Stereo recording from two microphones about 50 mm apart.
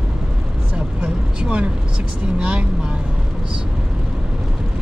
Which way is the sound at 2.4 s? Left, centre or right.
Centre.